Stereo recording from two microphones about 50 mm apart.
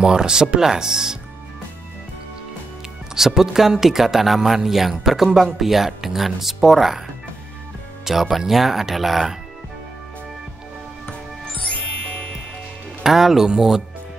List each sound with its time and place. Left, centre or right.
0.0 s speech: centre
3.2 s speech: centre
8.0 s speech: centre
11.9 s music: left
13.0 s speech: centre